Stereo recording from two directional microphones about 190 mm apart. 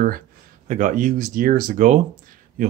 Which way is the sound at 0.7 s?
40° right (ahead or behind).